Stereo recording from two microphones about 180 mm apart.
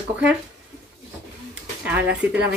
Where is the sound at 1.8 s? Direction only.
5° right (ahead or behind).